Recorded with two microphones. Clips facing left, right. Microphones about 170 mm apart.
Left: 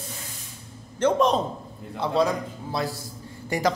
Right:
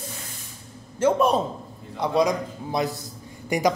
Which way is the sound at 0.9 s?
10° right (ahead or behind).